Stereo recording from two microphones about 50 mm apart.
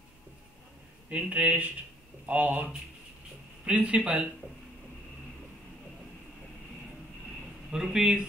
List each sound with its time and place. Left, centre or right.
1.1 s speech: right
3.6 s speech: right
7.7 s speech: centre